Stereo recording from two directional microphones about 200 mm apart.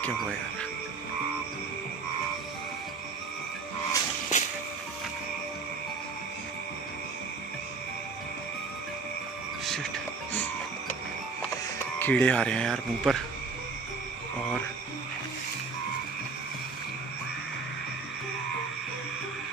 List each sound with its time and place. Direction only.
0.0 s speech: 5° left (ahead or behind)
4.3 s music: 35° left (ahead or behind)
9.7 s music: 5° left (ahead or behind)
12.0 s speech: 10° left (ahead or behind)